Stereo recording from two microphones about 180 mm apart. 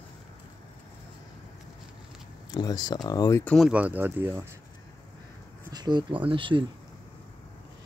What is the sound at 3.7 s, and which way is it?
Speech, 10° right (ahead or behind).